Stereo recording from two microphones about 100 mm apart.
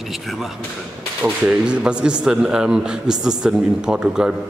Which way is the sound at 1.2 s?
10° right (ahead or behind).